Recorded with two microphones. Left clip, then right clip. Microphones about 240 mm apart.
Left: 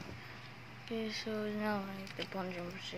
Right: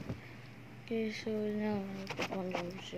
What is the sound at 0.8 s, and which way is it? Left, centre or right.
Speech, centre.